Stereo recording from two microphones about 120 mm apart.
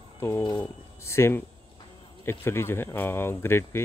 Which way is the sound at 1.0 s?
20° left (ahead or behind).